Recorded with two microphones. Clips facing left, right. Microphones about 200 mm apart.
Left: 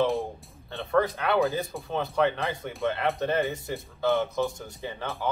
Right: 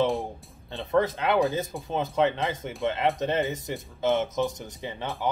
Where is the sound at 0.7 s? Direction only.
20° right (ahead or behind).